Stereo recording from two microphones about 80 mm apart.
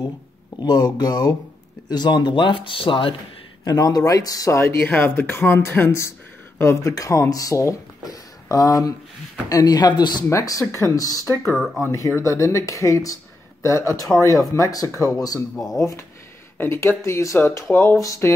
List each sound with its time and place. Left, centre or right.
0.6 s speech: left
3.6 s speech: left
4.5 s speech: left
10.3 s speech: left
11.5 s speech: centre
12.2 s speech: left